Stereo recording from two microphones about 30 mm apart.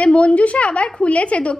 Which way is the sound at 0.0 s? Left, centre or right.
Left.